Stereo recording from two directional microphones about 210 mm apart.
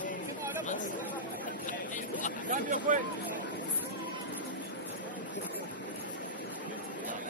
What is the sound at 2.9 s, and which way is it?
Speech, 40° right (ahead or behind).